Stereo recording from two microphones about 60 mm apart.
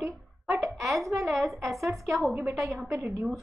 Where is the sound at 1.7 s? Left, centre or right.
Centre.